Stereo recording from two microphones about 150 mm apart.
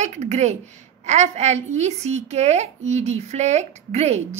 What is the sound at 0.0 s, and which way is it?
A woman's voice, 50° right (ahead or behind).